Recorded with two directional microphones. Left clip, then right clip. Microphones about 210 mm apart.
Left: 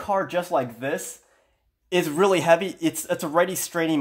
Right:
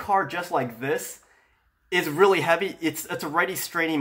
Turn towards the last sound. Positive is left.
turn(degrees=45)  # may be behind; listen again after turning